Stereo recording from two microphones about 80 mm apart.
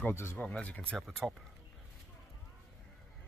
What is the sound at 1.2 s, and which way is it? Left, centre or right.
Speech, centre.